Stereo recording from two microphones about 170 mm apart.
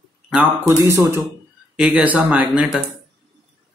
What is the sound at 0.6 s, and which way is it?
Speech, 15° right (ahead or behind).